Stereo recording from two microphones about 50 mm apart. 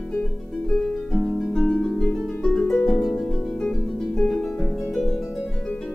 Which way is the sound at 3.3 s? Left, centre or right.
Centre.